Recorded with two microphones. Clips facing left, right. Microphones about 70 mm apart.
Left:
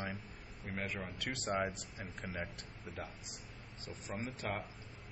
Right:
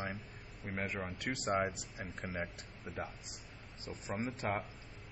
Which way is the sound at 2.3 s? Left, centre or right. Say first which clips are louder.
Right 2 dB; centre.